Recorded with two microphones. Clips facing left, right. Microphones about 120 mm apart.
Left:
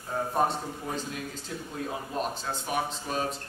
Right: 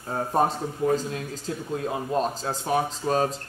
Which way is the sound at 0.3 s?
40° right (ahead or behind).